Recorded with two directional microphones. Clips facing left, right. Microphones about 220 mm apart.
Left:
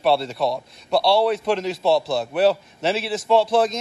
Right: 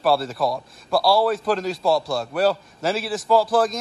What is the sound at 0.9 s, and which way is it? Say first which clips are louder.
Speech: left 1 dB; centre (ahead or behind).